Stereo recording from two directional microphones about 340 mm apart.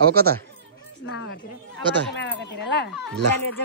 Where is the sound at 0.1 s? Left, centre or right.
Right.